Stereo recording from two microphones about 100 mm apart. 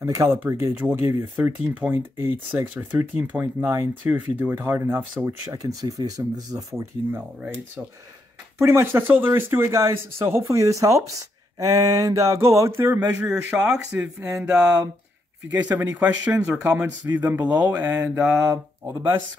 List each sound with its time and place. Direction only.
0.0 s speech: 30° right (ahead or behind)
5.5 s speech: 35° right (ahead or behind)
7.1 s speech: 20° right (ahead or behind)
15.5 s speech: 20° right (ahead or behind)